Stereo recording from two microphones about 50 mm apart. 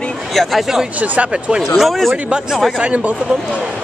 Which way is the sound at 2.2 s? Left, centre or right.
Centre.